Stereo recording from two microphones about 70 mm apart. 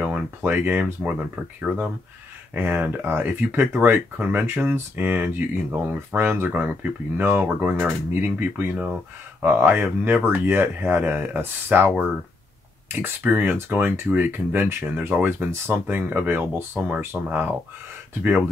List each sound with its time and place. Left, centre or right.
0.0 s speech: right
13.0 s speech: right